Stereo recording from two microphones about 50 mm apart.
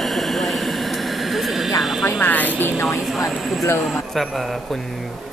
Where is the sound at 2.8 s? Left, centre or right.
Left.